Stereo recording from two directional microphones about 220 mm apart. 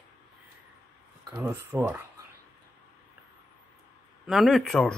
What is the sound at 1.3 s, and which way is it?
Speech, 15° right (ahead or behind).